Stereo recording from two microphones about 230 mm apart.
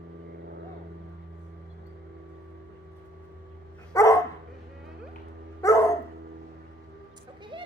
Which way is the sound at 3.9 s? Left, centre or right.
Centre.